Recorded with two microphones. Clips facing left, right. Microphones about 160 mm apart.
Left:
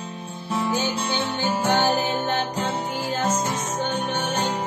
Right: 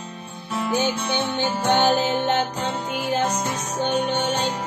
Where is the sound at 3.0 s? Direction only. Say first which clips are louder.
Right 4 dB; 20° right (ahead or behind).